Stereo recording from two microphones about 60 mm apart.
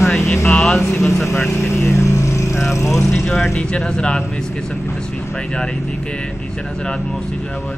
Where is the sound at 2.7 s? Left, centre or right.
Left.